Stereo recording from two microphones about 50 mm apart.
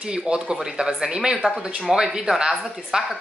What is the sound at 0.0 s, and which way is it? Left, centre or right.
Speech, centre.